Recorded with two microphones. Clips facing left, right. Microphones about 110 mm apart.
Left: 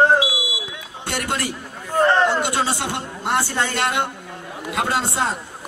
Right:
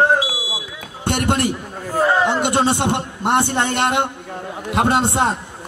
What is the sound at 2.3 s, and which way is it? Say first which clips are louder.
A woman's voice: right 4 dB; 20° right (ahead or behind).